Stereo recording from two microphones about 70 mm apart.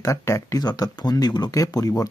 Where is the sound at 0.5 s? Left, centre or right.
Left.